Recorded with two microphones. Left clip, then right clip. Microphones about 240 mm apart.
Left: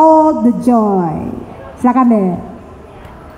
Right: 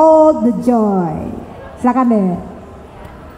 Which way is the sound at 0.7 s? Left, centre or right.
Left.